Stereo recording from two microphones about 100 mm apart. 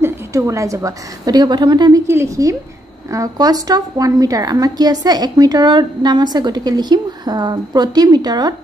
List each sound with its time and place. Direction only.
0.0 s a woman's voice: 30° right (ahead or behind); by 2.0 s 45° right (ahead or behind)
2.0 s a woman's voice: 30° right (ahead or behind)